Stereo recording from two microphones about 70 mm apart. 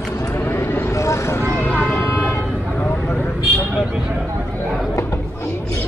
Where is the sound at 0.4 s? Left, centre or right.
Left.